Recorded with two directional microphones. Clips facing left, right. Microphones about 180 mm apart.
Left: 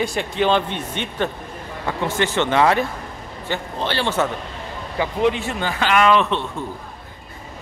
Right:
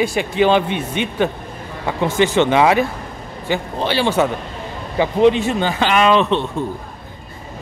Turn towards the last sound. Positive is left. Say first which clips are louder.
# right 2 dB
turn(degrees=-20)  # may be behind; listen again after turning